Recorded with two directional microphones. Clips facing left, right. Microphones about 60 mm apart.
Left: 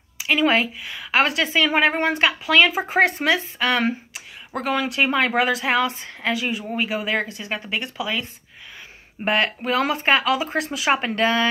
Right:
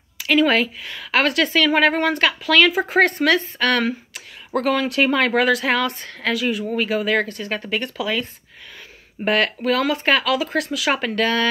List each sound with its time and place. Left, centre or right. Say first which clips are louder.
0.2 s a woman's voice: right 2 dB; centre
9.2 s speech: right 2 dB; centre